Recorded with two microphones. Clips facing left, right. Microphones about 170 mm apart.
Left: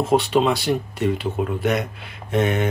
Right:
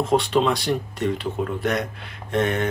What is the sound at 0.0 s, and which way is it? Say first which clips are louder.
Speech: left 2 dB; 5° left (ahead or behind).